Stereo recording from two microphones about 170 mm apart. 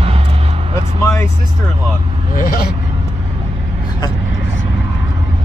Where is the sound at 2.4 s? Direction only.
55° left (ahead or behind).